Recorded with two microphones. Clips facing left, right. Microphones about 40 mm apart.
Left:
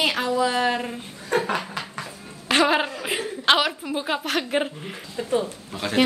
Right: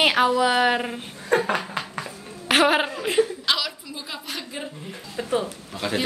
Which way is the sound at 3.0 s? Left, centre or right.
Centre.